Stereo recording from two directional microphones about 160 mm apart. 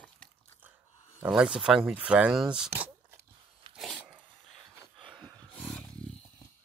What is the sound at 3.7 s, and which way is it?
Dog, centre (ahead or behind).